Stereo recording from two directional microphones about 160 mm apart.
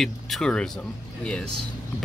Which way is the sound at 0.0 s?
5° left (ahead or behind).